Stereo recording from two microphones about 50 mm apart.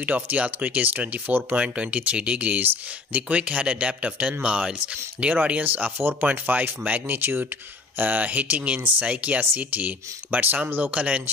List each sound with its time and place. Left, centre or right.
0.0 s speech: right
2.6 s speech: right
3.3 s speech: right
5.3 s speech: right
7.2 s speech: right
8.0 s speech: right